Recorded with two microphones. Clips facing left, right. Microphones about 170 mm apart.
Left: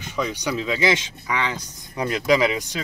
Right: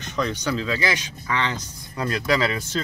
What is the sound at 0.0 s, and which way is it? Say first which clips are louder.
Speech: even; 10° left (ahead or behind).